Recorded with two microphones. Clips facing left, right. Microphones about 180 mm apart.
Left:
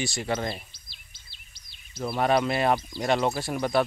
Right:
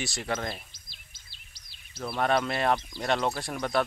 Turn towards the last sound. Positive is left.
turn(degrees=5)  # may be behind; listen again after turning